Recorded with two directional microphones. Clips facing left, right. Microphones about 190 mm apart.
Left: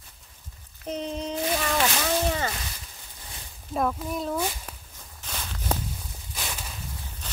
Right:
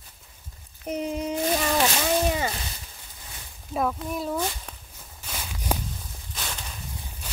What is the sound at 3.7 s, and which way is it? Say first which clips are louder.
Speech: even; centre (ahead or behind).